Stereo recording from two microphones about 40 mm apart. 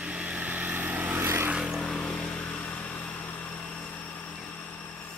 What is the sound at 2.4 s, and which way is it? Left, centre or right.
Vehicle, left.